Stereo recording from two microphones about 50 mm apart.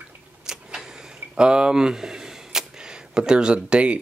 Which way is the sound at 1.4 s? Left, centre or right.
Centre.